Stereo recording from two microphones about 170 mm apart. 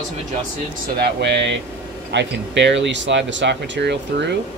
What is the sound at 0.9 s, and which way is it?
Speech, 80° right.